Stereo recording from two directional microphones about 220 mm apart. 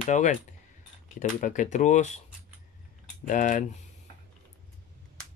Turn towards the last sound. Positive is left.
turn(degrees=35)  # may be behind; listen again after turning